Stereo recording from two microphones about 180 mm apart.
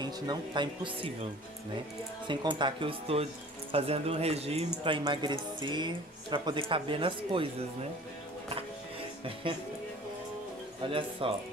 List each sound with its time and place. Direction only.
0.0 s speech: 25° right (ahead or behind)
9.2 s speech: 30° right (ahead or behind)
10.8 s speech: 30° right (ahead or behind)